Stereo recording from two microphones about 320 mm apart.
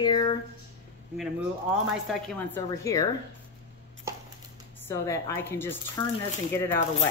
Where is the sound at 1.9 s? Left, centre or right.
Centre.